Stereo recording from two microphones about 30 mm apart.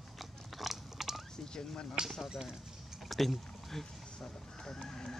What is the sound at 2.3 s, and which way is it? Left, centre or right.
Speech, right.